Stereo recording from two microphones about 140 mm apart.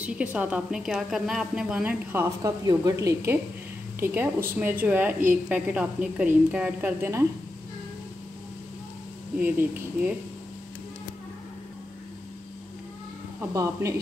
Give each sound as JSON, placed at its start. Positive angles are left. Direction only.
{"t": 0.0, "sound": "a woman's voice", "side_deg": -10}
{"t": 2.4, "sound": "a woman's voice", "side_deg": -25}
{"t": 9.4, "sound": "a woman's voice", "side_deg": -15}
{"t": 13.4, "sound": "a woman's voice", "side_deg": -25}